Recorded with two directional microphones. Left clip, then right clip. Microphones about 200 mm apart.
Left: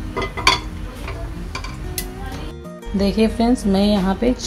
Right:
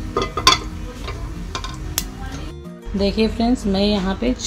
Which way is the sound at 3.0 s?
10° left (ahead or behind).